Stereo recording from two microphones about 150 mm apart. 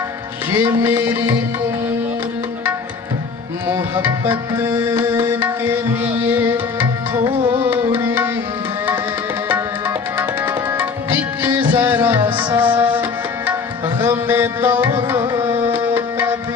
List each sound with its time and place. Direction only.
0.5 s music: 15° right (ahead or behind)
3.6 s music: 15° right (ahead or behind)
7.4 s tabla: 15° right (ahead or behind)
9.5 s tabla: 15° right (ahead or behind)
11.7 s music: 10° right (ahead or behind)
14.0 s music: 15° right (ahead or behind)
15.4 s tabla: 15° right (ahead or behind)